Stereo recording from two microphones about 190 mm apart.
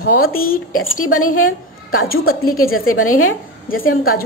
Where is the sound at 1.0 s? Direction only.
90° left.